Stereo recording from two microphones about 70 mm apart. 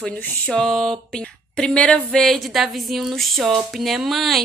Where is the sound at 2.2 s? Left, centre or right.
Centre.